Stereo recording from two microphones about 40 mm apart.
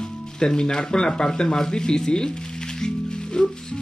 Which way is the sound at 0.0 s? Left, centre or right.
Centre.